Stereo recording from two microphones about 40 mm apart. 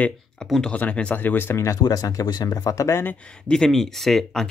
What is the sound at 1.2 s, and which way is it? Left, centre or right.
Speech, left.